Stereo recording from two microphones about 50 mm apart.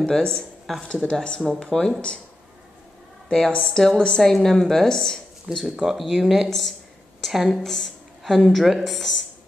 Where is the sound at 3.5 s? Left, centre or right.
Left.